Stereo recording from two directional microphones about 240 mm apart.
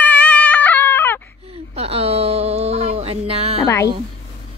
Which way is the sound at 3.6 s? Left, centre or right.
Centre.